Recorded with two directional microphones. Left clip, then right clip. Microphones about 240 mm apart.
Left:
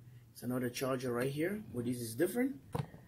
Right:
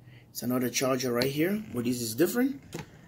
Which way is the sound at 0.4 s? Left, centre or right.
Right.